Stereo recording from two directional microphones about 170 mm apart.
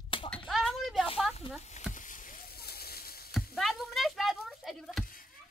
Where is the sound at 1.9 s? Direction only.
50° left (ahead or behind).